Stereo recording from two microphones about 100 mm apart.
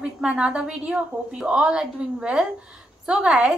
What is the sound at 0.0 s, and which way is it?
A woman's voice, 10° right (ahead or behind).